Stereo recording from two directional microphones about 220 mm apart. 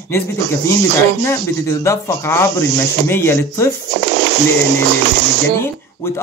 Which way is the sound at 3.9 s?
50° right (ahead or behind).